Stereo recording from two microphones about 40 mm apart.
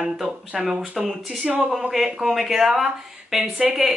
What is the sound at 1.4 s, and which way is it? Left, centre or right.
Speech, right.